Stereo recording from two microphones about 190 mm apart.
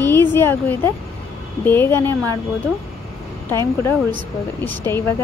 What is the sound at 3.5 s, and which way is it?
Speech, 15° left (ahead or behind).